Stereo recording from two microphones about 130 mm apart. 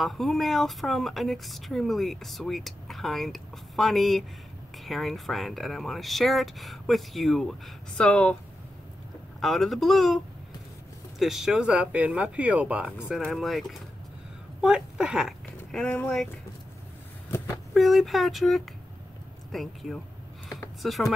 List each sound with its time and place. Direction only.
0.0 s speech: centre (ahead or behind)
9.4 s speech: centre (ahead or behind)
17.7 s speech: centre (ahead or behind)